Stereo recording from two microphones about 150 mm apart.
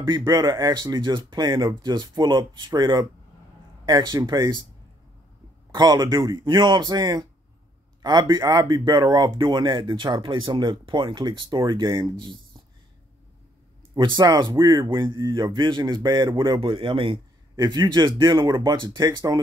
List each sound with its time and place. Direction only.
0.1 s speech: 25° right (ahead or behind)
5.7 s speech: 25° right (ahead or behind)
13.9 s speech: 30° right (ahead or behind)